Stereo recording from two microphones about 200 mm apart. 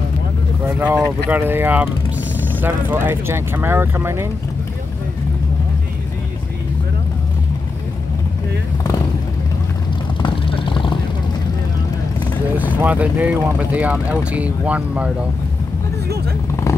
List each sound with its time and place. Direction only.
0.7 s speech: 10° right (ahead or behind)
10.2 s vehicle: 25° left (ahead or behind)
12.8 s speech: 5° right (ahead or behind)